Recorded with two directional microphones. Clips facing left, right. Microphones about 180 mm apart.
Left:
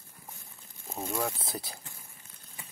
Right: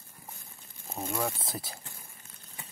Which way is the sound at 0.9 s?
Centre (ahead or behind).